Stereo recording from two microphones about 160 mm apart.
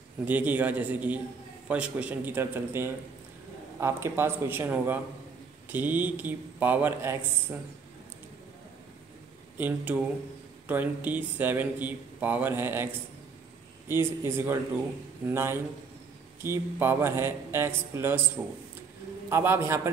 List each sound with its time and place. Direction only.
0.2 s speech: 10° right (ahead or behind)
9.6 s speech: 10° right (ahead or behind)
14.2 s speech: 15° right (ahead or behind)
19.2 s speech: 15° right (ahead or behind)